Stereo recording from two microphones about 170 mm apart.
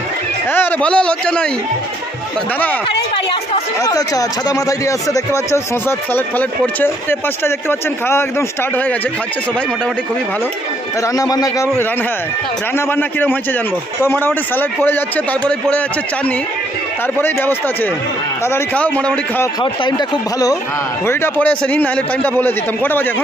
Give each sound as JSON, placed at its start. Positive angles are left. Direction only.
{"t": 0.5, "sound": "speech", "side_deg": 10}
{"t": 3.8, "sound": "speech", "side_deg": 20}
{"t": 11.1, "sound": "speech", "side_deg": 20}
{"t": 12.7, "sound": "speech", "side_deg": 10}
{"t": 17.2, "sound": "speech", "side_deg": 15}
{"t": 19.6, "sound": "speech", "side_deg": 25}
{"t": 21.1, "sound": "speech", "side_deg": 10}